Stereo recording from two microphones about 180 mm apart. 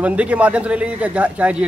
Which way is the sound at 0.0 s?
5° right (ahead or behind).